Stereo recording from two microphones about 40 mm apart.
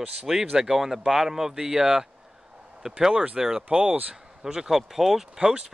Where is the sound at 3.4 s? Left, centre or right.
Centre.